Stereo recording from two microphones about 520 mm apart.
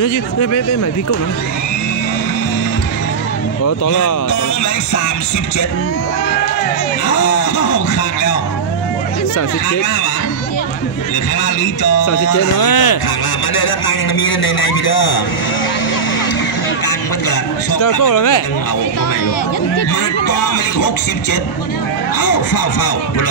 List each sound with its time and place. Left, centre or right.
0.0 s speech: left
3.6 s speech: left
7.1 s speech: left
11.8 s a man's voice: left
16.8 s speech: left
19.9 s speech: left